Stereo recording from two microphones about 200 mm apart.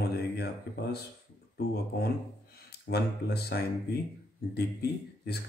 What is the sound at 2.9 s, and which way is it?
Speech, 55° left (ahead or behind).